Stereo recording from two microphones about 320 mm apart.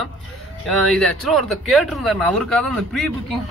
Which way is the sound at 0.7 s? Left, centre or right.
Centre.